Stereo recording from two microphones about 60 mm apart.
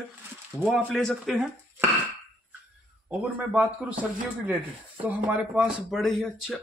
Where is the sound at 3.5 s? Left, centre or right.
Right.